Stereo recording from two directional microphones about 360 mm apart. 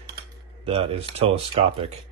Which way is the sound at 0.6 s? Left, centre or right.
Centre.